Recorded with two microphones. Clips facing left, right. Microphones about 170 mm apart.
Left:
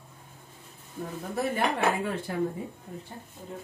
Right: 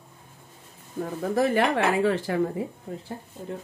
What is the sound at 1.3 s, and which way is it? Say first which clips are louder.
Speech: right 6 dB; 90° right.